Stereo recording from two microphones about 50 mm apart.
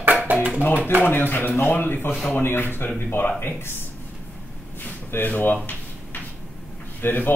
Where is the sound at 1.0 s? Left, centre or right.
Left.